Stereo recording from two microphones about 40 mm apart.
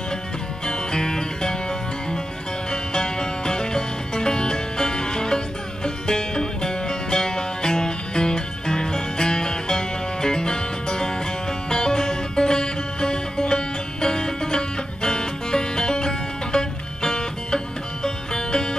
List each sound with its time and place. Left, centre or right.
0.7 s music: centre